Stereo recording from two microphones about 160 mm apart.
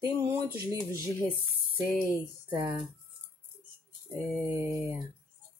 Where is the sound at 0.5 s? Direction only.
25° right (ahead or behind).